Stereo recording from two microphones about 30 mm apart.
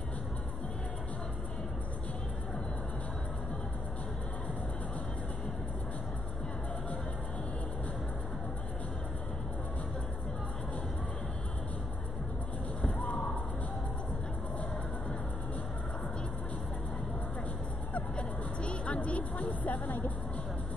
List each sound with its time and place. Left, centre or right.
12.8 s basketball bounce: left
18.1 s music: left